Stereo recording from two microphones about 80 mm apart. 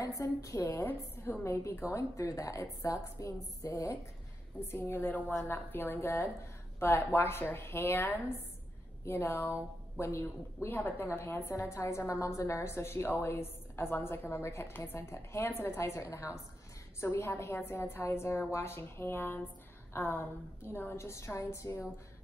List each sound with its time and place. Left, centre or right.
0.0 s a woman's voice: left
0.6 s a woman's voice: left
1.4 s a woman's voice: left
4.6 s a woman's voice: left